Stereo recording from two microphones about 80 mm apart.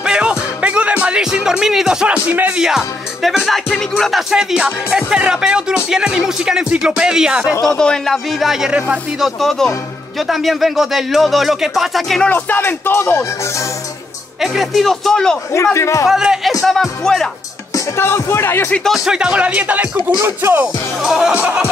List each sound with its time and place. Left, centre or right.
0.0 s music: centre
2.6 s speech: centre
3.9 s music: centre
7.6 s speech: centre
9.2 s speech: centre
12.2 s speech: centre
14.4 s speech: centre
15.5 s speech: left
16.1 s speech: centre
17.7 s speech: left
18.9 s music: centre
20.2 s music: right
20.6 s speech: centre